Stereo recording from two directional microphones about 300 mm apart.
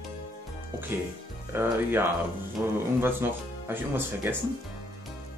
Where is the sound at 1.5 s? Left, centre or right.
Centre.